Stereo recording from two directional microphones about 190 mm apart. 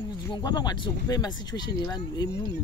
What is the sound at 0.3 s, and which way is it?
Speech, 20° left (ahead or behind).